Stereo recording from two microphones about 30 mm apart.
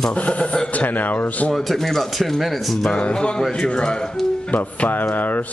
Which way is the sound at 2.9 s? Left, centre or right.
Left.